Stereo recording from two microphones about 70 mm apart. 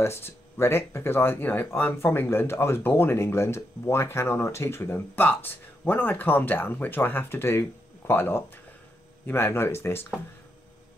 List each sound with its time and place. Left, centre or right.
0.0 s speech: left